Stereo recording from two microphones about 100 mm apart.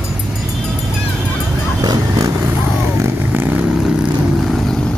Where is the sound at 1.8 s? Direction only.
40° right (ahead or behind).